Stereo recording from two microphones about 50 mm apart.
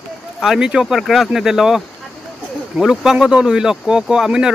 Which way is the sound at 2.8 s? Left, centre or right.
Centre.